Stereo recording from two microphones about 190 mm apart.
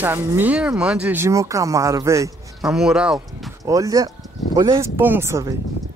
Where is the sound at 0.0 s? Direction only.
10° right (ahead or behind).